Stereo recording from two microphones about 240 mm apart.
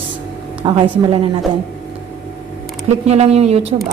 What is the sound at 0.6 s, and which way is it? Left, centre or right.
Speech, right.